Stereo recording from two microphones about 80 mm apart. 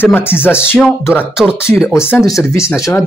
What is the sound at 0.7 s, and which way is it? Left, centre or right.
Speech, centre.